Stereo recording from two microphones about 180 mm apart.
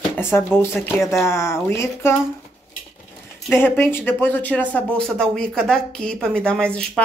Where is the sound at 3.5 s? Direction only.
10° left (ahead or behind).